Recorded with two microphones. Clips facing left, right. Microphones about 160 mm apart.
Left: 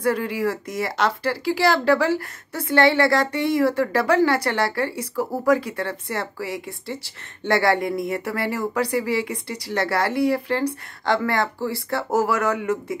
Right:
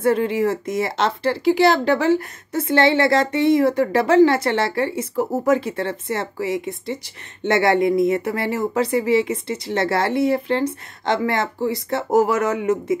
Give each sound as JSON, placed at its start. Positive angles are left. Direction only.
{"t": 0.0, "sound": "speech", "side_deg": -25}